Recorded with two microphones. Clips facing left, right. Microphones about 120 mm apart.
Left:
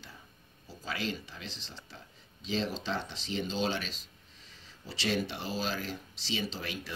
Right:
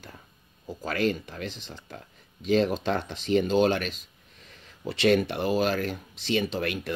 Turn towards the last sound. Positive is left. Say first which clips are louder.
# right 9 dB
turn(degrees=-60)  # may be behind; listen again after turning